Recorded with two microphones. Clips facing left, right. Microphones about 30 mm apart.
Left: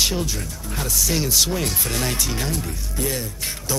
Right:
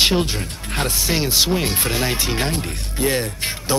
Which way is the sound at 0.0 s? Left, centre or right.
Right.